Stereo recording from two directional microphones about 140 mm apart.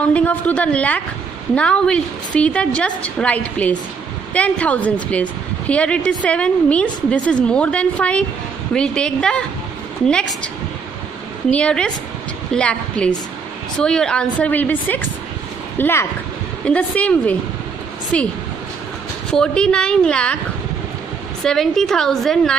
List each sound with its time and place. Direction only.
0.0 s a woman's voice: 10° left (ahead or behind)
11.5 s a woman's voice: 10° left (ahead or behind)
19.3 s a woman's voice: 5° left (ahead or behind)
21.4 s a woman's voice: 5° left (ahead or behind)